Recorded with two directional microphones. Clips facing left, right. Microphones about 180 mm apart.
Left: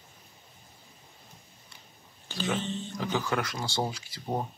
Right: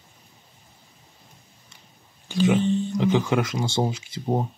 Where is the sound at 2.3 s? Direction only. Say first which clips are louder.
Right 11 dB; 15° right (ahead or behind).